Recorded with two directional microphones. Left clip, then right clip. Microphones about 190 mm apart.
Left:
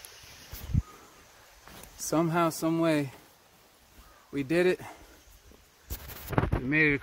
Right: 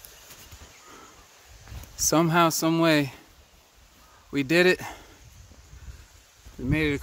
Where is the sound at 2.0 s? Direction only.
55° right (ahead or behind).